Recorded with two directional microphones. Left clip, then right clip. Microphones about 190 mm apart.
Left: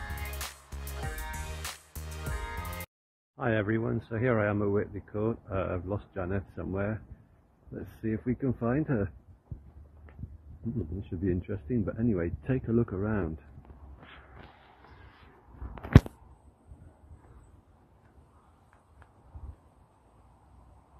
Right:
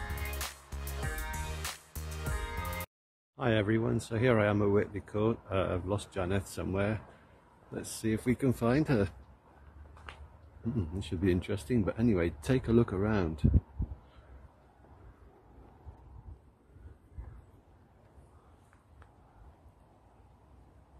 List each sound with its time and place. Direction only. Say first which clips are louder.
0.0 s music: even; centre (ahead or behind)
3.3 s speech: even; 20° right (ahead or behind)
11.0 s speech: right 3 dB; 15° right (ahead or behind)